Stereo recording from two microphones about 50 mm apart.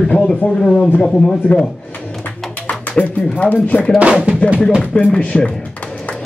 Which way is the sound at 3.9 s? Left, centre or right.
Right.